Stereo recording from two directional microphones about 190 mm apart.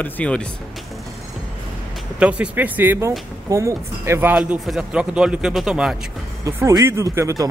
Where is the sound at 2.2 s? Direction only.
5° right (ahead or behind).